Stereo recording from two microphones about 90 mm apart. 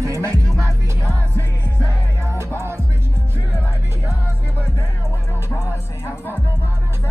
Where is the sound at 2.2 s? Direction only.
30° right (ahead or behind).